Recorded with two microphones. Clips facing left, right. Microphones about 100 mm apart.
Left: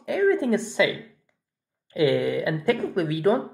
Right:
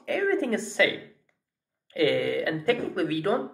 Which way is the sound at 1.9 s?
20° left (ahead or behind).